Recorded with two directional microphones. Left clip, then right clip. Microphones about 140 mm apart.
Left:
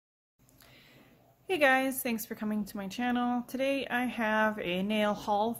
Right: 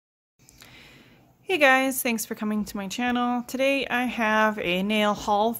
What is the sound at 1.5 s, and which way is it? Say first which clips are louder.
A woman's voice: right 6 dB; 40° right (ahead or behind).